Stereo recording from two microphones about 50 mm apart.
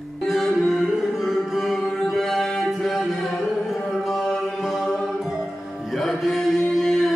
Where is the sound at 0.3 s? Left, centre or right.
Centre.